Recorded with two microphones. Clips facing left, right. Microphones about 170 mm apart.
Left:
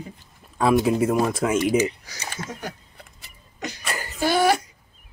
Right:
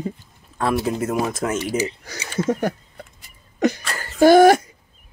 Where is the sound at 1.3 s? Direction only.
10° left (ahead or behind).